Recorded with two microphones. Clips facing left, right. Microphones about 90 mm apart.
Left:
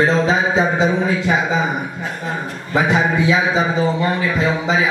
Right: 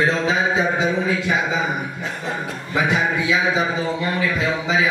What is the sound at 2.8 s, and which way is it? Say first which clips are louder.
Speech: left 4 dB; 35° left (ahead or behind).